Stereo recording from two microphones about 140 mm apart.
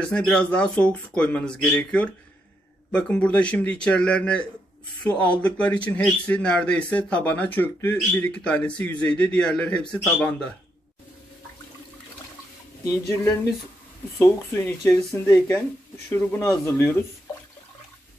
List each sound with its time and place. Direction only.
0.0 s speech: 5° left (ahead or behind)
14.1 s speech: 20° left (ahead or behind)